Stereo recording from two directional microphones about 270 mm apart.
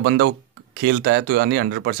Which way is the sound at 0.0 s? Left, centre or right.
Right.